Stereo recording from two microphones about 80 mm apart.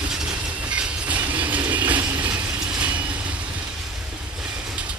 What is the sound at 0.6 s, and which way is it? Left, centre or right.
Train, centre.